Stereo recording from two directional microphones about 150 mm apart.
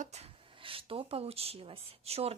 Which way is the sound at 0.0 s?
45° right (ahead or behind).